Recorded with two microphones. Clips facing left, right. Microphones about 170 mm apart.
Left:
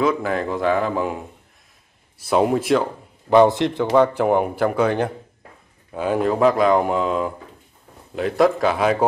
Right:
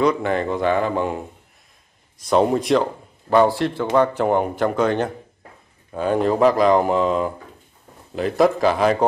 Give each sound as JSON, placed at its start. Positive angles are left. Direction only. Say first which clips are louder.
{"t": 0.0, "sound": "speech", "louder": "right 1 dB", "side_deg": 0}
{"t": 3.3, "sound": "a man's voice", "louder": "left 2 dB", "side_deg": 20}